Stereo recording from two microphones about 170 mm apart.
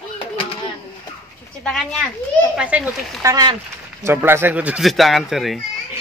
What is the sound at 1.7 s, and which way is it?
Music, 5° left (ahead or behind).